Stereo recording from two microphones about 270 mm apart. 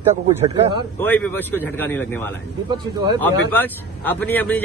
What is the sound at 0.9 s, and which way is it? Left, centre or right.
Speech, centre.